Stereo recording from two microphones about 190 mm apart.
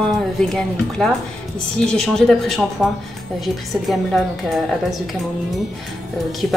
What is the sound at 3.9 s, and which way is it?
Speech, centre (ahead or behind).